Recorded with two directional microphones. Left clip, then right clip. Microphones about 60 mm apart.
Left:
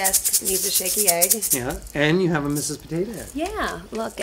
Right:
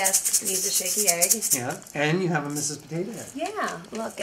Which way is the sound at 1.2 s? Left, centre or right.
Right.